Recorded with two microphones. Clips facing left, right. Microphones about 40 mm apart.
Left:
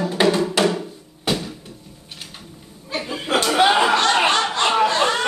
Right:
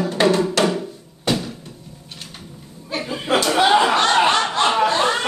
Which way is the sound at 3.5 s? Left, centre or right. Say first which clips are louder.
Even; centre.